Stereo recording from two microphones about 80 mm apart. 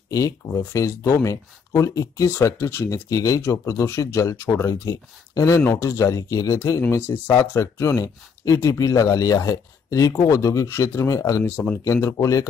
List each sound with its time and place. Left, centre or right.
0.5 s speech: left
6.9 s speech: left
11.4 s speech: left
11.8 s speech: left